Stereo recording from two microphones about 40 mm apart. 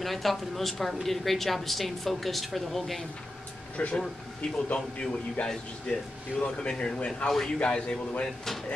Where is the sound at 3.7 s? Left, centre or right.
Left.